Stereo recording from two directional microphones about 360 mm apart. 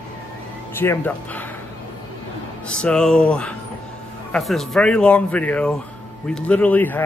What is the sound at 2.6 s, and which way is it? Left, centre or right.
Speech, centre.